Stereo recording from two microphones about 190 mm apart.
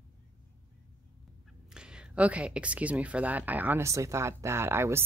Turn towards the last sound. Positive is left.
turn(degrees=-15)  # may be behind; listen again after turning